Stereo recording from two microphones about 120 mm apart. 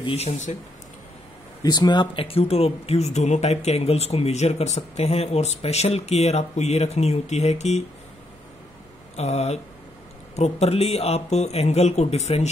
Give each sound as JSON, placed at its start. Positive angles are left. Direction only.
{"t": 0.0, "sound": "speech", "side_deg": 60}
{"t": 1.6, "sound": "speech", "side_deg": 35}
{"t": 9.1, "sound": "speech", "side_deg": 65}